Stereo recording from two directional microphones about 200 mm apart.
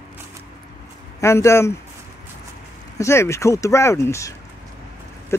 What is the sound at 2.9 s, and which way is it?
Speech, 15° left (ahead or behind).